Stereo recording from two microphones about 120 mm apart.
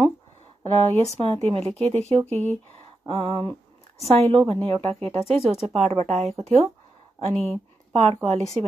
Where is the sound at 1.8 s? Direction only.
65° right (ahead or behind).